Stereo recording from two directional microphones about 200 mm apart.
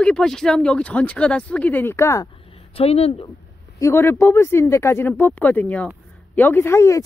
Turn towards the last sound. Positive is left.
turn(degrees=15)  # may be behind; listen again after turning